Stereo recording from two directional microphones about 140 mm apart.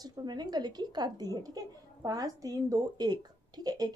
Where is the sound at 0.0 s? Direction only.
30° right (ahead or behind).